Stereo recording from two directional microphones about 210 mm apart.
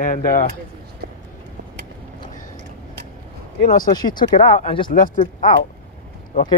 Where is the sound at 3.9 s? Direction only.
20° left (ahead or behind).